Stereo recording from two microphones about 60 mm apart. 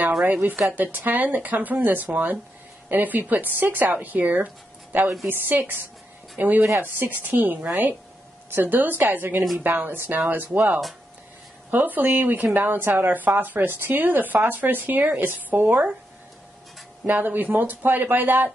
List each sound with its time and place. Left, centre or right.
0.2 s speech: right
5.0 s a woman's voice: centre
5.3 s speech: right
11.7 s speech: right
17.0 s speech: right